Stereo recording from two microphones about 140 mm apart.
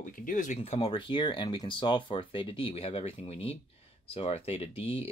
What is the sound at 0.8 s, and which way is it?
Speech, 35° left (ahead or behind).